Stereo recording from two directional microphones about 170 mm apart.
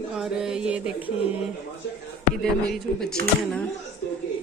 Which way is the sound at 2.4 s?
5° left (ahead or behind).